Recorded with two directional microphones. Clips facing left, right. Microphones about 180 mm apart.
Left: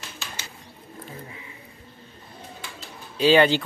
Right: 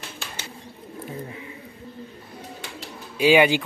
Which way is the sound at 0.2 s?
55° right (ahead or behind).